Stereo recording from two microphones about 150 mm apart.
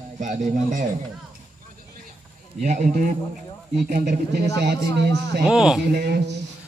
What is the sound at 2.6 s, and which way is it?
Speech, 55° right (ahead or behind).